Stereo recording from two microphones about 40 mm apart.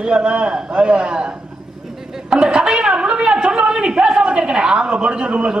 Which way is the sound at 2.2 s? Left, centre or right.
Right.